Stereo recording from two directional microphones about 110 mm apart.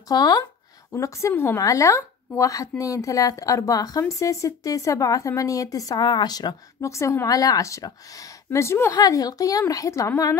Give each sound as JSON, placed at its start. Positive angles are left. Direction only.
{"t": 0.1, "sound": "a woman's voice", "side_deg": 35}